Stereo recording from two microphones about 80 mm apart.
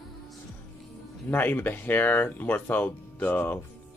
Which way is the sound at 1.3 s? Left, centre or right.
Left.